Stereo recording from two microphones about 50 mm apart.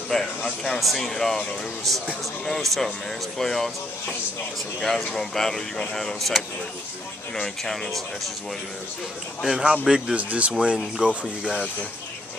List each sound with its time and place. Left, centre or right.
0.1 s speech: centre
4.8 s speech: centre
7.4 s speech: centre
9.4 s a man's voice: centre
10.1 s speech: right
10.5 s speech: centre